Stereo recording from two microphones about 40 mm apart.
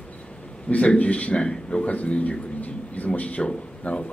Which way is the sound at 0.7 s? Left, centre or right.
Left.